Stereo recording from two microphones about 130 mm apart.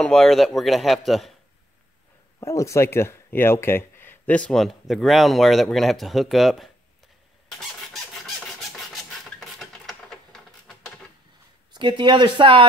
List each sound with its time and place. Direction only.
0.0 s speech: 5° left (ahead or behind)
2.4 s speech: 25° left (ahead or behind); by 6.7 s centre (ahead or behind)
8.7 s a sound: centre (ahead or behind)
11.7 s speech: 40° right (ahead or behind)